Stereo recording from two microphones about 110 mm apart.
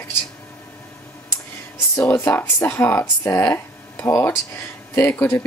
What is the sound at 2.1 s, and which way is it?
Speech, 20° left (ahead or behind).